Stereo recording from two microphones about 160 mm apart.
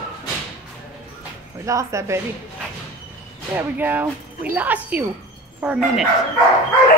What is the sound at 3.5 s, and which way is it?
Speech, 10° right (ahead or behind).